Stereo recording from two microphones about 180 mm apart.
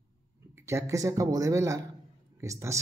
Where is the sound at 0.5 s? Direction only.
15° right (ahead or behind).